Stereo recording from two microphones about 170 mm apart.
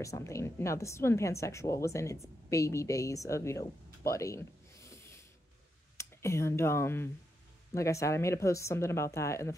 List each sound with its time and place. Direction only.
0.0 s a woman's voice: 20° left (ahead or behind)